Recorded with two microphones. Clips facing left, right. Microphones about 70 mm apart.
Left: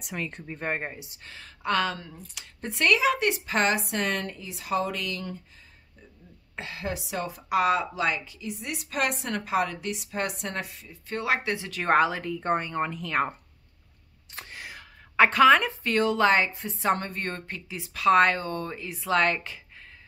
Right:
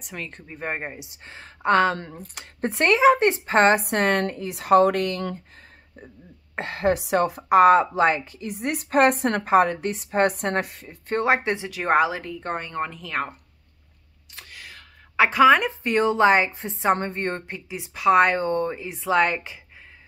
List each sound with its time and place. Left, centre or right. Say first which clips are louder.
0.0 s speech: left 1 dB; centre
1.1 s speech: right 3 dB; right
2.0 s speech: right 6 dB; right
3.8 s speech: right 7 dB; right
6.5 s speech: right 11 dB; right
11.2 s a woman's voice: right 4 dB; right
11.7 s speech: right 1 dB; centre
14.3 s a sound: left 2 dB; left
15.1 s speech: right 2 dB; centre
15.8 s a woman's voice: right 4 dB; right
18.4 s speech: right 8 dB; right